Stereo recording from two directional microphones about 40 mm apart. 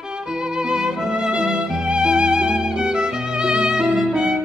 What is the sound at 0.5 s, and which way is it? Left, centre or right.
Music, centre.